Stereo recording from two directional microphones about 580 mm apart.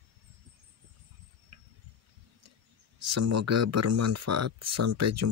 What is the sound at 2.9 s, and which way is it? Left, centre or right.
Speech, right.